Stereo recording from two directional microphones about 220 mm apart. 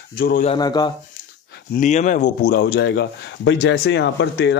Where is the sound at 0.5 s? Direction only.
20° left (ahead or behind).